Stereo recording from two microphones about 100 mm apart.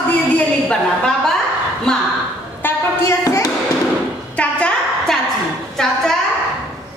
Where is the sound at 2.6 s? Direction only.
30° left (ahead or behind).